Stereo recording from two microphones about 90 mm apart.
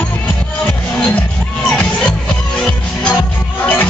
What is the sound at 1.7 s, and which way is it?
Music, 10° left (ahead or behind).